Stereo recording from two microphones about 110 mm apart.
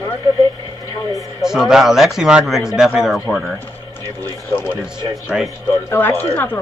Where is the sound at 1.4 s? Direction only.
5° right (ahead or behind).